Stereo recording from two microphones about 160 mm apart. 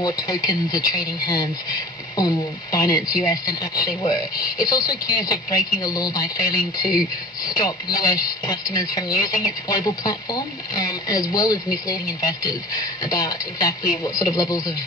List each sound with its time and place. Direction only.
0.0 s speech: 20° left (ahead or behind)